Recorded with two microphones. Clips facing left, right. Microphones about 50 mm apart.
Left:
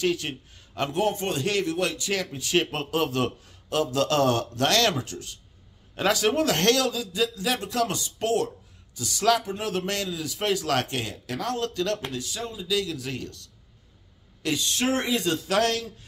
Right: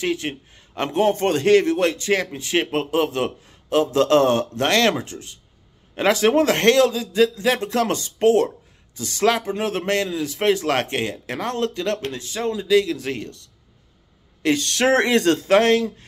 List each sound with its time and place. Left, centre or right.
0.0 s a man's voice: right
14.6 s speech: right
15.4 s a man's voice: right